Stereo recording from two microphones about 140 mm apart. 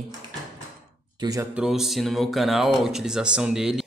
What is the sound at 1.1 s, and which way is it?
Speech, 25° right (ahead or behind).